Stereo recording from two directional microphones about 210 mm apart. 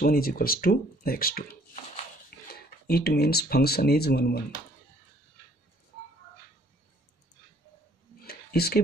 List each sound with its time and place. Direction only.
0.0 s speech: 45° left (ahead or behind)
2.9 s speech: 45° left (ahead or behind)
8.2 s a sound: 45° left (ahead or behind)